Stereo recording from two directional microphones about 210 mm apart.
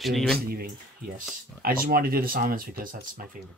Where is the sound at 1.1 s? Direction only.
45° right (ahead or behind).